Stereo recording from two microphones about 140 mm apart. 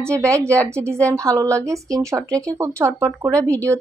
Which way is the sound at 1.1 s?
25° right (ahead or behind).